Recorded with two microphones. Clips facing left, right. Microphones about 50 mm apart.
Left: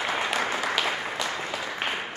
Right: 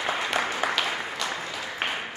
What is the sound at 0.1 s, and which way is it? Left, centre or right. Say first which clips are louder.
Applause: right 1 dB; centre.